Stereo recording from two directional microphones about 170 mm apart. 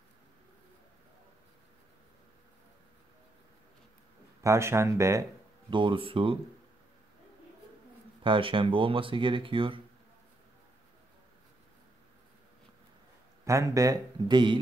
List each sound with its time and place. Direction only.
4.4 s speech: 15° right (ahead or behind)
5.7 s speech: 30° right (ahead or behind)
8.2 s speech: 30° right (ahead or behind)
13.5 s speech: 20° right (ahead or behind)